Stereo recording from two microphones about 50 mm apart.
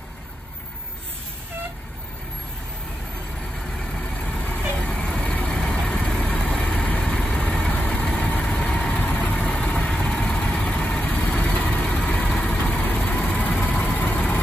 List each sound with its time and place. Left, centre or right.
4.7 s vehicle: centre
9.1 s vehicle: left
9.4 s vehicle: centre; by 11.8 s left
11.8 s vehicle: centre
12.4 s vehicle: left